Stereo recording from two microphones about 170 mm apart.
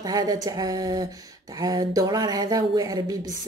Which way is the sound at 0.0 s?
20° right (ahead or behind).